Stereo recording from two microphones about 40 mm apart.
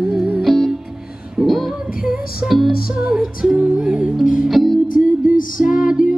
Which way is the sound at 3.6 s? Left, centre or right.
Right.